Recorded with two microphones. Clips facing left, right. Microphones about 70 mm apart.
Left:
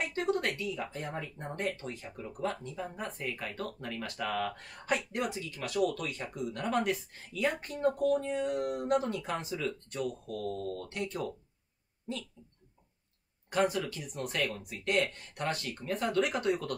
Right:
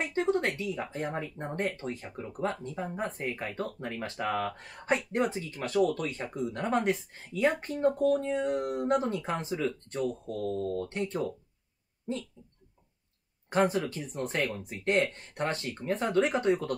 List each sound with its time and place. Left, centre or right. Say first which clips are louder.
0.0 s speech: right 3 dB; right
13.5 s speech: right 3 dB; right